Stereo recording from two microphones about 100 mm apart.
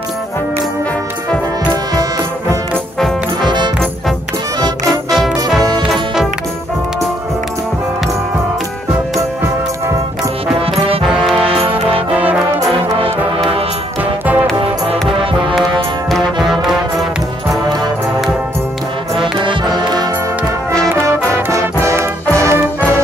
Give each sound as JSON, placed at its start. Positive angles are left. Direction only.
{"t": 3.4, "sound": "music", "side_deg": -50}
{"t": 5.8, "sound": "music", "side_deg": -5}
{"t": 11.1, "sound": "music", "side_deg": -5}
{"t": 16.1, "sound": "music", "side_deg": 0}
{"t": 19.4, "sound": "music", "side_deg": -45}
{"t": 21.8, "sound": "music", "side_deg": -30}